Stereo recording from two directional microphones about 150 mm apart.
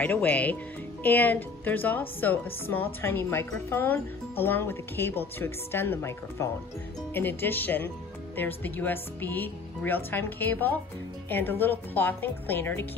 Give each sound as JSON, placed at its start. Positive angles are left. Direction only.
{"t": 0.0, "sound": "speech", "side_deg": 10}